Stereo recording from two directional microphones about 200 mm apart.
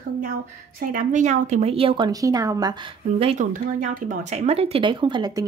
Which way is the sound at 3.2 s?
30° right (ahead or behind).